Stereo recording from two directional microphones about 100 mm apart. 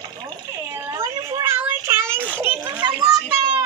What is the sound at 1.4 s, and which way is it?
Child singing, 25° right (ahead or behind).